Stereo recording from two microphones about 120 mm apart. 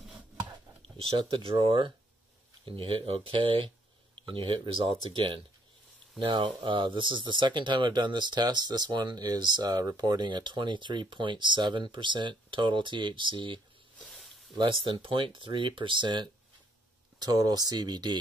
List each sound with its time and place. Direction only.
0.8 s speech: 45° right (ahead or behind)
13.9 s snake: 10° left (ahead or behind)
14.5 s speech: 45° right (ahead or behind)